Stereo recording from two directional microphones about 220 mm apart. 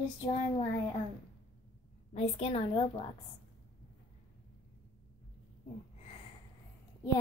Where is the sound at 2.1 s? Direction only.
30° left (ahead or behind).